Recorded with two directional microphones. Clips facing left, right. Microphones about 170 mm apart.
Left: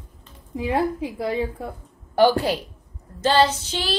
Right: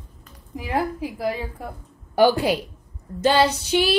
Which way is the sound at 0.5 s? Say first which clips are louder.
Left 2 dB; 25° left (ahead or behind).